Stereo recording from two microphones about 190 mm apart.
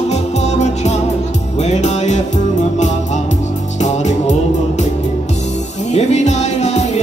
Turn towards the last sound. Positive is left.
turn(degrees=35)  # may be behind; listen again after turning